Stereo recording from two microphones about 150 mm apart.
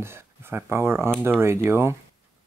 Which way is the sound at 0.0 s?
15° right (ahead or behind).